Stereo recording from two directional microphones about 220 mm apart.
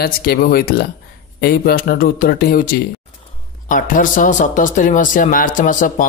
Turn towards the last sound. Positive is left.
turn(degrees=35)  # may be behind; listen again after turning